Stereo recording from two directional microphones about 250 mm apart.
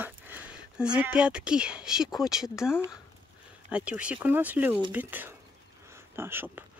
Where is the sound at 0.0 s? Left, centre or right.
Centre.